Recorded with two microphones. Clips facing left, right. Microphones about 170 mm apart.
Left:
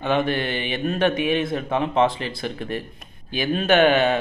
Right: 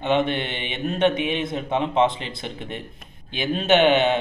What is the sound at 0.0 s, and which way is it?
Speech, 25° right (ahead or behind).